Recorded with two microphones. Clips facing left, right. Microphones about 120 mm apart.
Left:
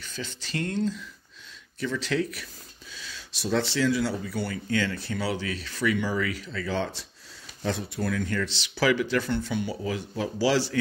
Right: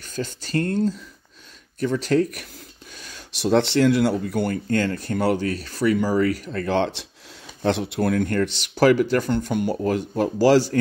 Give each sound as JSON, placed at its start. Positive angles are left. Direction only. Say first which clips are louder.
{"t": 0.0, "sound": "speech", "louder": "right 8 dB", "side_deg": -45}